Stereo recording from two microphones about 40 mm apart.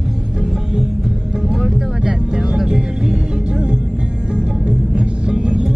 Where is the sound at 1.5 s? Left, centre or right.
Centre.